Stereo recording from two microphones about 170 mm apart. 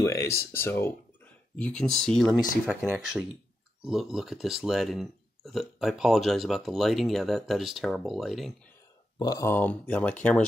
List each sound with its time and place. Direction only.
0.0 s speech: 20° left (ahead or behind); by 8.5 s centre (ahead or behind)
9.2 s speech: 20° left (ahead or behind)